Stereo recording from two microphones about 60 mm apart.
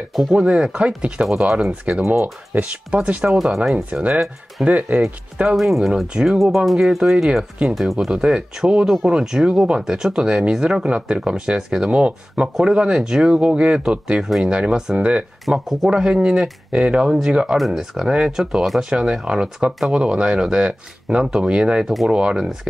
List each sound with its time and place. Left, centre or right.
0.3 s speech: centre
1.2 s speech: centre
2.0 s speech: right
2.6 s speech: right
3.3 s speech: centre
3.7 s speech: right
5.6 s speech: centre
13.7 s speech: centre
17.6 s speech: centre